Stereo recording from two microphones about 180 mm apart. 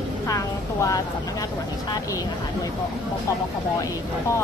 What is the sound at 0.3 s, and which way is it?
Speech, 20° left (ahead or behind).